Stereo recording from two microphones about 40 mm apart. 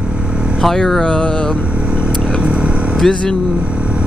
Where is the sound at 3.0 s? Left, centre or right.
Centre.